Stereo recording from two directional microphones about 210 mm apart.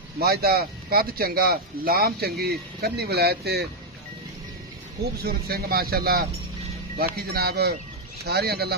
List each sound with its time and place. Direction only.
0.2 s speech: 45° right (ahead or behind)
5.2 s speech: 45° right (ahead or behind)